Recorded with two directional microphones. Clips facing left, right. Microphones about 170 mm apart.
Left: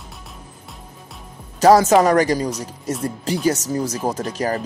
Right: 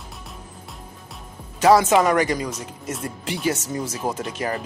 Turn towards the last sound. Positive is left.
turn(degrees=40)  # may be behind; listen again after turning